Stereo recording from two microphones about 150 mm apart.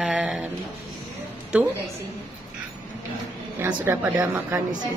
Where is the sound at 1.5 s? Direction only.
5° right (ahead or behind).